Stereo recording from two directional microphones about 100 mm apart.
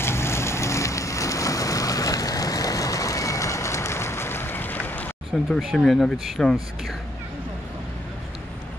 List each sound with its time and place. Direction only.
0.0 s vehicle: 25° left (ahead or behind)
5.5 s speech: centre (ahead or behind)